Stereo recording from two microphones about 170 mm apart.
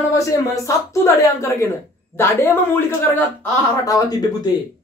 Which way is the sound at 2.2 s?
15° left (ahead or behind).